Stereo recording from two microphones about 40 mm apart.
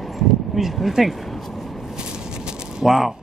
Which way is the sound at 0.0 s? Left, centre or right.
Centre.